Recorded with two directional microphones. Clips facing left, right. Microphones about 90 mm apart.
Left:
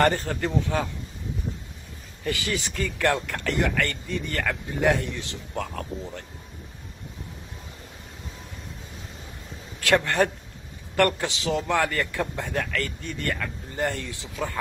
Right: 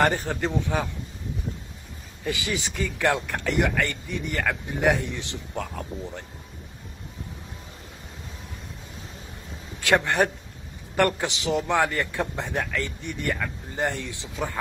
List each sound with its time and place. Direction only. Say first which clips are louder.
0.0 s a man's voice: left 1 dB; 15° right (ahead or behind)
2.2 s a man's voice: even; 20° right (ahead or behind)
5.5 s a man's voice: left 2 dB; 10° right (ahead or behind)
9.8 s a man's voice: even; 20° right (ahead or behind)